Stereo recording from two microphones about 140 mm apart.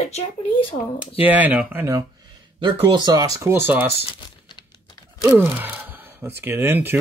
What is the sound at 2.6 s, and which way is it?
Speech, 35° right (ahead or behind).